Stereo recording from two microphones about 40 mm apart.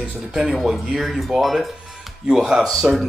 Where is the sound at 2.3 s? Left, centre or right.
Centre.